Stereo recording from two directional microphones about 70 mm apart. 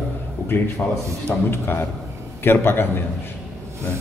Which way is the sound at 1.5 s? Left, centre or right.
Left.